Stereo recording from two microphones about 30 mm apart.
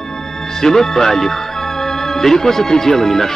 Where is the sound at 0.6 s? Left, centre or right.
Centre.